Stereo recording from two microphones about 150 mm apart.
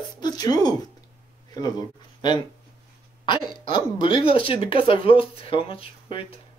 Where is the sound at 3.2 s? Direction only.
35° left (ahead or behind).